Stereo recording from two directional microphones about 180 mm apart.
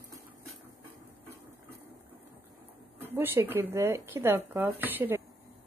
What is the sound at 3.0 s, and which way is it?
Speech, 10° right (ahead or behind).